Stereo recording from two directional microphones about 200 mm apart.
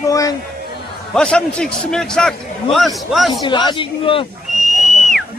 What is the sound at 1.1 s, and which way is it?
A man's voice, 5° left (ahead or behind).